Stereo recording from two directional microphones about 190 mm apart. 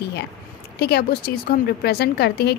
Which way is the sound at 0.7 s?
55° left (ahead or behind).